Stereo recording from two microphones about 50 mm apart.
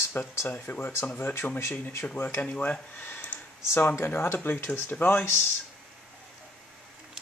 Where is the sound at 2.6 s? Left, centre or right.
Left.